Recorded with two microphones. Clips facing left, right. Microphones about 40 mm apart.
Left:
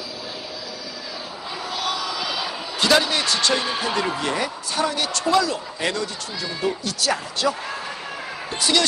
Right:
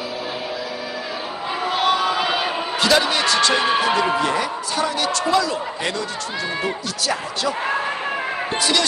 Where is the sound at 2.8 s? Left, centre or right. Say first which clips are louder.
Right 1 dB; centre.